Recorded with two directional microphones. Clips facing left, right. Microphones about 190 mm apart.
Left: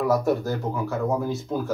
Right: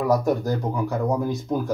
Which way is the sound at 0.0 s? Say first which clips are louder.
Right 1 dB; 15° right (ahead or behind).